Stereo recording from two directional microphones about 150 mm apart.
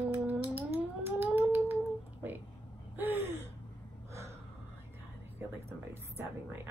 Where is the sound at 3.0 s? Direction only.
15° right (ahead or behind).